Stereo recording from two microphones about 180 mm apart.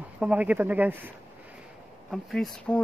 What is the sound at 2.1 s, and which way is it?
Speech, centre (ahead or behind).